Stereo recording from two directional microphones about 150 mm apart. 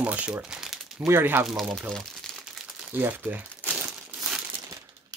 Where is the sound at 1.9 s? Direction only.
Centre (ahead or behind).